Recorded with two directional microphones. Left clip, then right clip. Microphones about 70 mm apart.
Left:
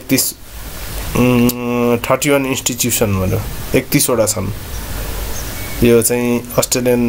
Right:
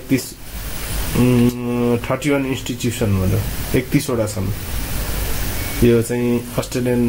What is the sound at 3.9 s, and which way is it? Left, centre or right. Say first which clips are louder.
Speech: left 7 dB; centre.